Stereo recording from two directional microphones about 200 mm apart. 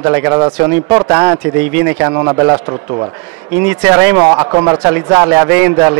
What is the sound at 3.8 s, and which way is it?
Speech, 10° right (ahead or behind).